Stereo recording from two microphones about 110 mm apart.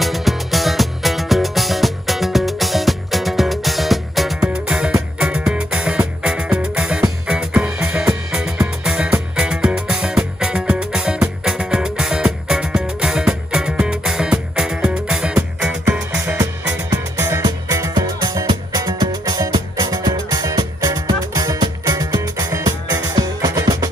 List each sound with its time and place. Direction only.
0.0 s music: centre (ahead or behind)
16.9 s music: 25° right (ahead or behind)